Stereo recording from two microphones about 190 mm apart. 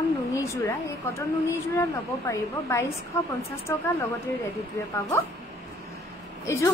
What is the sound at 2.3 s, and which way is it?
Speech, 15° left (ahead or behind).